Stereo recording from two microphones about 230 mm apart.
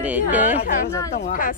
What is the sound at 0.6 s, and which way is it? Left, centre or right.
Speech, left.